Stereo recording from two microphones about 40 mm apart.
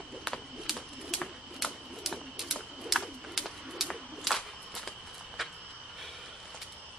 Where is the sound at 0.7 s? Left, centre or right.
Centre.